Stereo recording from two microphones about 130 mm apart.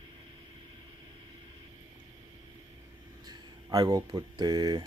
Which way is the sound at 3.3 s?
30° right (ahead or behind).